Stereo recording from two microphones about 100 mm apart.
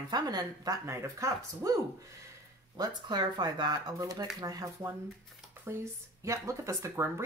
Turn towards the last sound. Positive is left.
turn(degrees=-30)  # may be behind; listen again after turning